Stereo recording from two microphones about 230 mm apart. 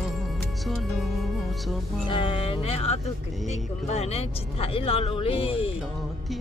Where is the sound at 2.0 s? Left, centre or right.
Left.